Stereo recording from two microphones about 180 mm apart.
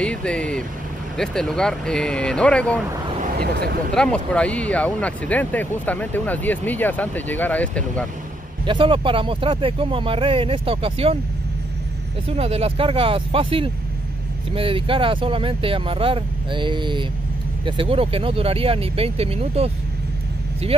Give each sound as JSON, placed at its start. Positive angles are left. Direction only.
{"t": 0.0, "sound": "vehicle", "side_deg": 5}
{"t": 1.1, "sound": "speech", "side_deg": 5}
{"t": 3.3, "sound": "speech", "side_deg": -60}
{"t": 3.9, "sound": "speech", "side_deg": 5}
{"t": 8.6, "sound": "speech", "side_deg": -30}
{"t": 12.3, "sound": "speech", "side_deg": -35}